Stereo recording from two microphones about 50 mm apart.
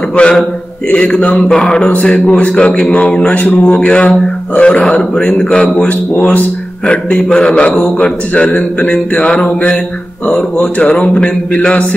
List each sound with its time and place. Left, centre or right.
0.1 s a man's voice: left
6.9 s a man's voice: left